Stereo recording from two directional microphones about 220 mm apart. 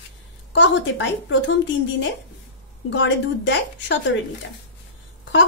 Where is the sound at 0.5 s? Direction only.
55° left (ahead or behind).